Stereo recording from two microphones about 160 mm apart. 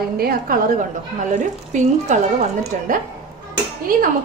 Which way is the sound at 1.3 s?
50° right (ahead or behind).